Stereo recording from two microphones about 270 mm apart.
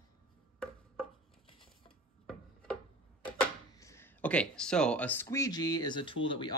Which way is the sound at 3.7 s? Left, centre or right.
Centre.